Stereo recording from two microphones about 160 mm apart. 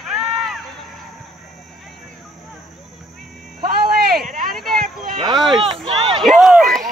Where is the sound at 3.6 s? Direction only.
70° right (ahead or behind).